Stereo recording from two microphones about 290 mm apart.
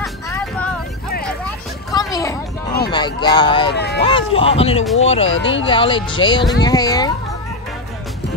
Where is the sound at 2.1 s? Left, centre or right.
Centre.